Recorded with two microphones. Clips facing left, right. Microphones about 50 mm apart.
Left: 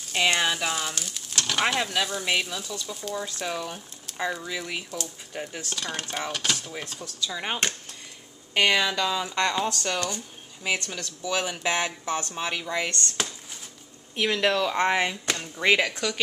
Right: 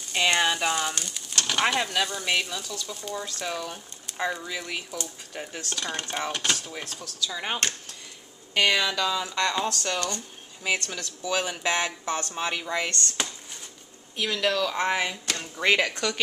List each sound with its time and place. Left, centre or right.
0.0 s speech: centre
6.8 s speech: centre
10.9 s speech: centre
14.1 s speech: left
15.3 s speech: centre